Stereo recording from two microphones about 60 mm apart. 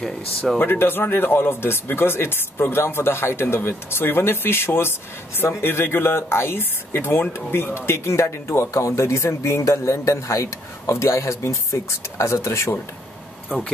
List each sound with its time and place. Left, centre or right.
0.0 s speech: centre
0.6 s speech: left